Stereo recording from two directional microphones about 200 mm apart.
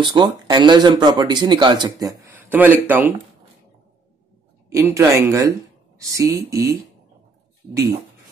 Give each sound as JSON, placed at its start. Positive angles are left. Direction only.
{"t": 0.0, "sound": "speech", "side_deg": -25}
{"t": 4.6, "sound": "speech", "side_deg": -15}